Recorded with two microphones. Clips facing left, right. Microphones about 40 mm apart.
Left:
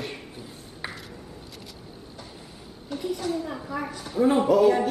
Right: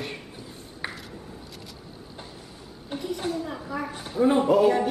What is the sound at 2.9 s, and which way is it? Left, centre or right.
Speech, right.